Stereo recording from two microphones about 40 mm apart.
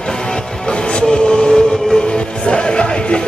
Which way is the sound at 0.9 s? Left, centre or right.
Left.